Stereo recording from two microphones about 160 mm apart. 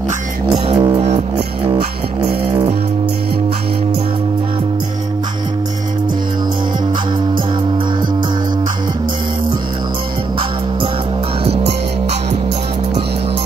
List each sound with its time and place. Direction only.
0.7 s music: 25° right (ahead or behind)